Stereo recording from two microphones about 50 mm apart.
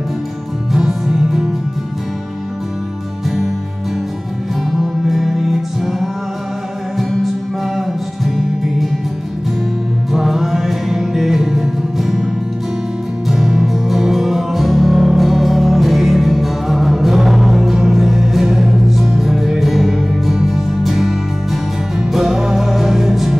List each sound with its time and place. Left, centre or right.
0.7 s music: centre
4.6 s music: centre
10.1 s music: centre
13.3 s music: centre